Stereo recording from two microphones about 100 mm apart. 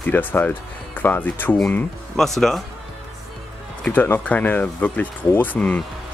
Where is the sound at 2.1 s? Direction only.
5° left (ahead or behind).